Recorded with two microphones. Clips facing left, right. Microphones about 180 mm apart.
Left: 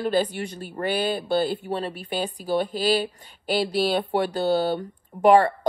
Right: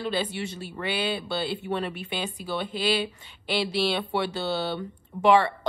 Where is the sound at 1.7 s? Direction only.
35° left (ahead or behind).